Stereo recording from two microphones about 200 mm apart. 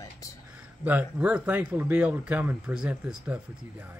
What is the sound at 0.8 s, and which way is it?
Speech, 5° right (ahead or behind).